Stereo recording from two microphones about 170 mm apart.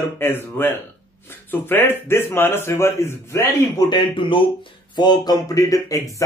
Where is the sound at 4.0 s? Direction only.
30° left (ahead or behind).